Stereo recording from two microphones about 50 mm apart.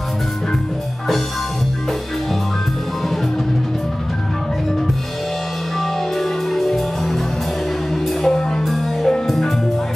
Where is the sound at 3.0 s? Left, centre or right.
Centre.